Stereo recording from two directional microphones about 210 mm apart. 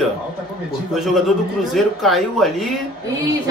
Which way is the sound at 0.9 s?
Centre (ahead or behind).